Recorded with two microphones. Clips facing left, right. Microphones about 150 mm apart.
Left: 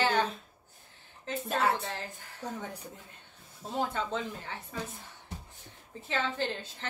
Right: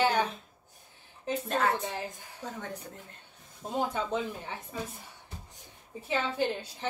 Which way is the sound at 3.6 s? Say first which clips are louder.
Right 1 dB; 15° right (ahead or behind).